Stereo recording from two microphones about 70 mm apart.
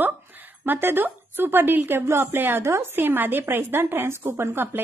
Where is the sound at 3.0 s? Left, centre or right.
Right.